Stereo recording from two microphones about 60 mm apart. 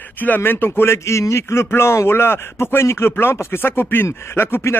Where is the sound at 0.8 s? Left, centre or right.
Left.